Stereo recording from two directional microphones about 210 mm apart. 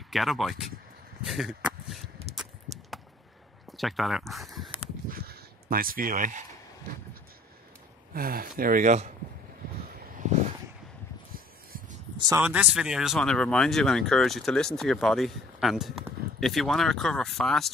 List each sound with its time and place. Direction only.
0.1 s speech: centre (ahead or behind)
3.7 s speech: centre (ahead or behind)
5.1 s a sound: 45° right (ahead or behind)
8.1 s speech: 45° right (ahead or behind)
12.3 s speech: 10° right (ahead or behind)